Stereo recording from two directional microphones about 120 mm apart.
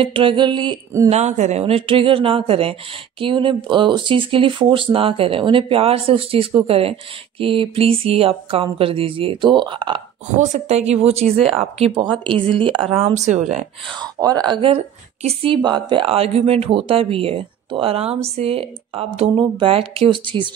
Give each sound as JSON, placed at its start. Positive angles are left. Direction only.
{"t": 0.0, "sound": "speech", "side_deg": -50}
{"t": 1.0, "sound": "speech", "side_deg": -70}
{"t": 1.6, "sound": "speech", "side_deg": -50}
{"t": 10.3, "sound": "speech", "side_deg": -80}
{"t": 12.9, "sound": "speech", "side_deg": -70}
{"t": 13.9, "sound": "speech", "side_deg": -35}
{"t": 19.3, "sound": "speech", "side_deg": -45}